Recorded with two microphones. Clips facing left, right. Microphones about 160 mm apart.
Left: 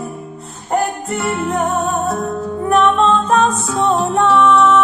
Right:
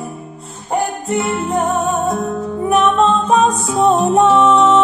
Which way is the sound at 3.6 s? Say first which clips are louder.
Right 3 dB; 20° right (ahead or behind).